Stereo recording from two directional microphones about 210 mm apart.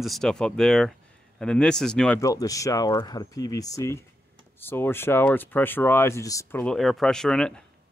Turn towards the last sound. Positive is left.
turn(degrees=5)  # may be behind; listen again after turning